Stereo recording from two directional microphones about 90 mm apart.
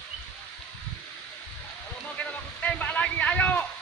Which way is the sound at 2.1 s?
15° left (ahead or behind).